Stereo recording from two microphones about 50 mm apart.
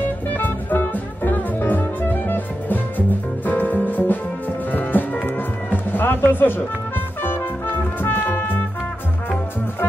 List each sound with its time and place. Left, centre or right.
0.0 s music: left